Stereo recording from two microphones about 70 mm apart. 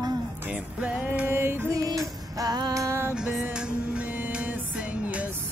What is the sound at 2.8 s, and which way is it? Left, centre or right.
Music, right.